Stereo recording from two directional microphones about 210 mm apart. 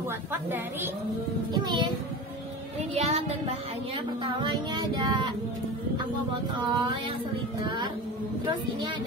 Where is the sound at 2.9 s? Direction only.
30° right (ahead or behind).